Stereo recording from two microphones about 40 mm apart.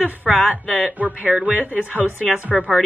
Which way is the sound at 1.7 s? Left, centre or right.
Left.